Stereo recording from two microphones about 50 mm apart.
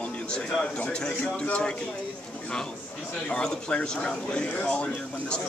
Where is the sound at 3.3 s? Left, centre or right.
Centre.